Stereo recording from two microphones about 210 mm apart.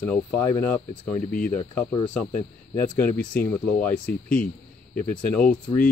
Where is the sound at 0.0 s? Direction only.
5° left (ahead or behind).